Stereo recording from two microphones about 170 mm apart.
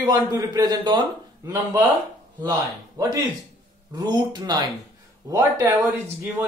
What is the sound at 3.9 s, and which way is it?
Speech, 25° right (ahead or behind).